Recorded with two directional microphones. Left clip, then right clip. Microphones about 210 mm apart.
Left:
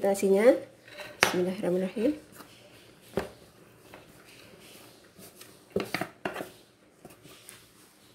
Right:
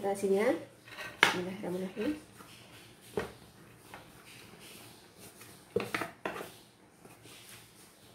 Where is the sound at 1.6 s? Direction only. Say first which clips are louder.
Left 11 dB; 45° left (ahead or behind).